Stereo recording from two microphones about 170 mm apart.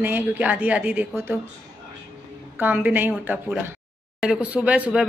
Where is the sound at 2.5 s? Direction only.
10° right (ahead or behind).